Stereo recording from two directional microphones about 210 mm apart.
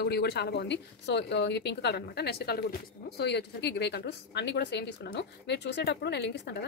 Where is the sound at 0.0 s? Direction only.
50° left (ahead or behind).